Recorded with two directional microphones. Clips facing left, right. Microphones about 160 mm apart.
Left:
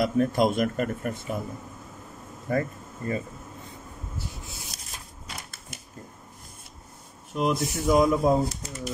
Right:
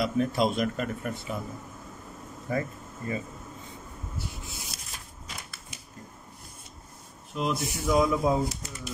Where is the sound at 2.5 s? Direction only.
50° left (ahead or behind).